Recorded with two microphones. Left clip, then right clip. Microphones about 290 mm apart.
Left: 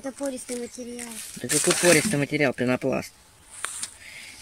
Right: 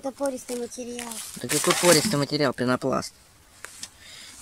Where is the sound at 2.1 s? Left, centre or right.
Centre.